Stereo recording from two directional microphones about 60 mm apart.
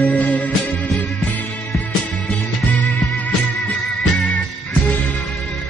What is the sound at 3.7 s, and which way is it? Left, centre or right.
Music, centre.